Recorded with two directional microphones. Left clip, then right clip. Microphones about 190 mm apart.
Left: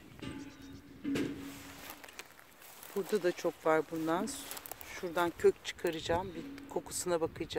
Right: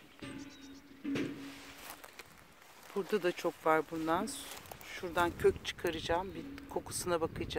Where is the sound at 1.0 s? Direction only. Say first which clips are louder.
Left 2 dB; 65° left (ahead or behind).